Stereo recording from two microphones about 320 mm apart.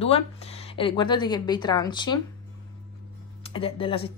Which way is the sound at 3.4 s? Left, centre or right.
Centre.